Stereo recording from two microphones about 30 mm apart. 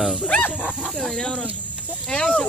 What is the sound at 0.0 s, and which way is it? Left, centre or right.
Speech, centre.